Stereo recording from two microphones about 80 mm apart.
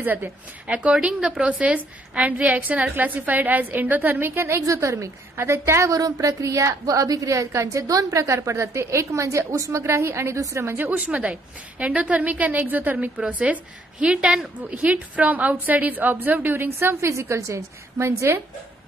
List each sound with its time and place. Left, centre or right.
0.0 s a woman's voice: right
10.9 s a woman's voice: centre
17.1 s a woman's voice: right